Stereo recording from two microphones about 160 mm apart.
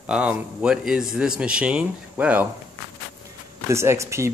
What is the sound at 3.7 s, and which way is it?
Speech, 15° right (ahead or behind).